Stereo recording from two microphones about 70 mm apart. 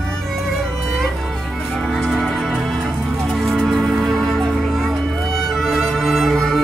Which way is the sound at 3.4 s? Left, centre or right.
Centre.